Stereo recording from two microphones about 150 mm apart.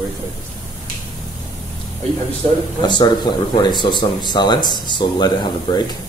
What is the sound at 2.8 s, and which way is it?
Speech, 30° left (ahead or behind).